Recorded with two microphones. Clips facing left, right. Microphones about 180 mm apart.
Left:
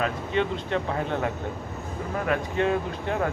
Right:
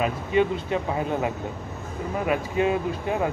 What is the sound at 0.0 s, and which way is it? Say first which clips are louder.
Speech: right 3 dB; 10° right (ahead or behind).